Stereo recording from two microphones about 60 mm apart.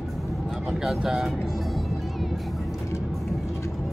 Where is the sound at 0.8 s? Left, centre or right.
Centre.